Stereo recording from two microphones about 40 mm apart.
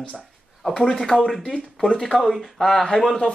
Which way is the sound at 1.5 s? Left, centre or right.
Left.